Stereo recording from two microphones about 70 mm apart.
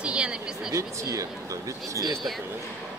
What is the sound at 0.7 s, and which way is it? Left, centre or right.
Speech, right.